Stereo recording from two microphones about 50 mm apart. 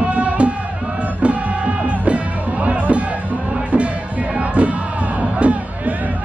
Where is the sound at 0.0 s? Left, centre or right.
Right.